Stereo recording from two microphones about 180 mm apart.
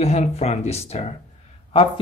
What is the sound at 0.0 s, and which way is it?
Speech, 35° left (ahead or behind).